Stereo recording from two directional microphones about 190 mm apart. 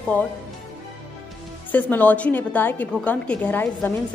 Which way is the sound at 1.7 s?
10° left (ahead or behind).